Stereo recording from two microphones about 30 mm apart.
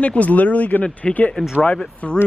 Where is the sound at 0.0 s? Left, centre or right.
Left.